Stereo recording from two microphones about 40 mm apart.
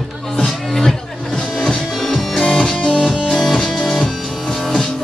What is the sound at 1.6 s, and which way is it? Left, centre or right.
Music, centre.